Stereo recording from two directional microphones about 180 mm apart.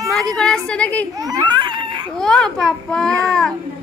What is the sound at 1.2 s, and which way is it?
Crying, 20° right (ahead or behind).